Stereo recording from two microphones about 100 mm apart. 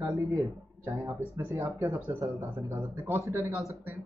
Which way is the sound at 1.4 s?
25° right (ahead or behind).